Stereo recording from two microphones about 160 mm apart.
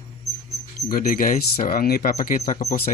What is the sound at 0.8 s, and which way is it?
Speech, 65° left (ahead or behind).